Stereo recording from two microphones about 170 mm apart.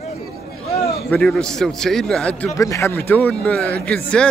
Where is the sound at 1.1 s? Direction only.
5° left (ahead or behind).